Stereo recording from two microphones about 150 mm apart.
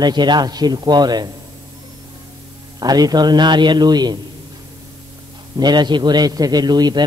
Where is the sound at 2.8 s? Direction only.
25° right (ahead or behind).